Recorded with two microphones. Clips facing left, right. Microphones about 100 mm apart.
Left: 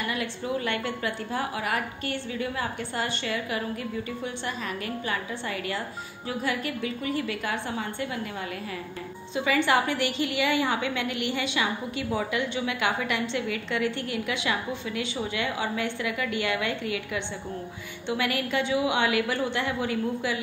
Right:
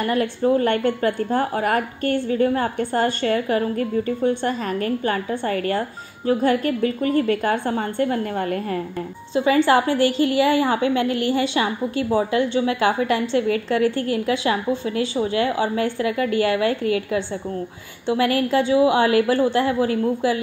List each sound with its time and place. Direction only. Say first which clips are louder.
0.0 s a woman's voice: right 11 dB; 45° right (ahead or behind)
9.3 s a woman's voice: right 7 dB; 35° right (ahead or behind)